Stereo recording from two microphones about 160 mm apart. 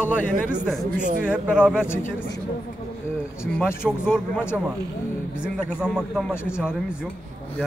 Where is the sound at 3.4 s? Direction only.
15° left (ahead or behind).